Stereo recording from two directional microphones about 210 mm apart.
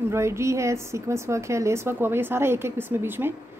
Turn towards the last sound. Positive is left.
turn(degrees=-10)  # may be behind; listen again after turning